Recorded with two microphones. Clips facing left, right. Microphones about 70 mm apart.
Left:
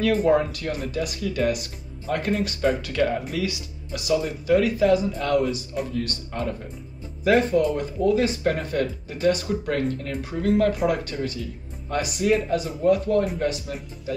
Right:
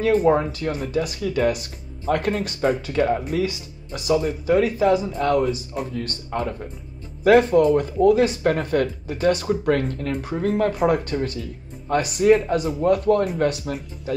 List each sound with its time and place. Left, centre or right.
0.3 s speech: right
7.2 s speech: right